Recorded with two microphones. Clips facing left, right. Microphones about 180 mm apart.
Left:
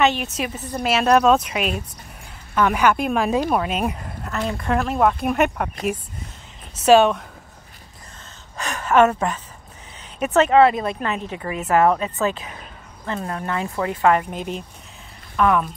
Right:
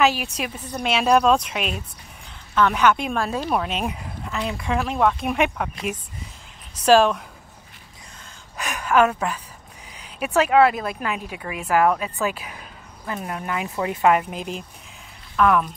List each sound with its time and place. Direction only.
0.0 s speech: centre (ahead or behind); by 3.5 s 15° left (ahead or behind)
3.5 s speech: 5° left (ahead or behind)
6.8 s speech: 5° left (ahead or behind)
8.5 s a sound: 15° right (ahead or behind)
8.9 s speech: 5° right (ahead or behind)
14.3 s speech: centre (ahead or behind)